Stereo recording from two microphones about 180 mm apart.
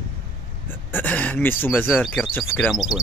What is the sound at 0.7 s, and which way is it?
Speech, 10° left (ahead or behind).